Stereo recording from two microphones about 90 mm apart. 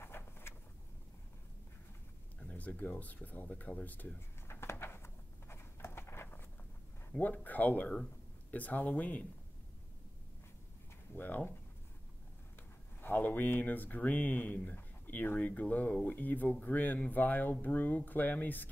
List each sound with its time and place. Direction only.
0.0 s vehicle: 25° left (ahead or behind)
2.4 s a sound: 15° left (ahead or behind)
7.1 s speech: 20° left (ahead or behind)
11.1 s speech: 20° left (ahead or behind)
13.0 s speech: 20° left (ahead or behind)